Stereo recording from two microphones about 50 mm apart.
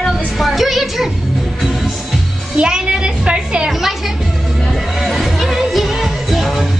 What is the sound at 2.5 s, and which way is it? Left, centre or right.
Music, centre.